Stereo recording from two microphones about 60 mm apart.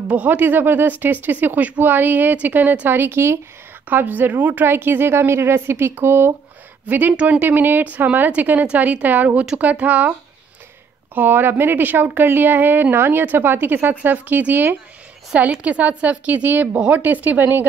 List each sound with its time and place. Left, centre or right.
0.1 s speech: right
3.0 s speech: right
3.9 s speech: right
6.9 s a woman's voice: right
11.1 s a woman's voice: right